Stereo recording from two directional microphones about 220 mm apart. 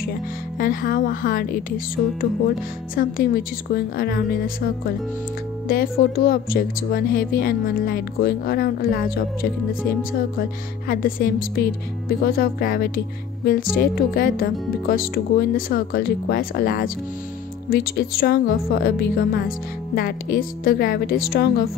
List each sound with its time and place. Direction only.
0.6 s a woman's voice: 40° left (ahead or behind)
10.9 s a woman's voice: 40° left (ahead or behind)